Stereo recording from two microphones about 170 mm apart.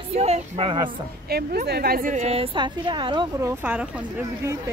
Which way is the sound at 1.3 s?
65° right (ahead or behind).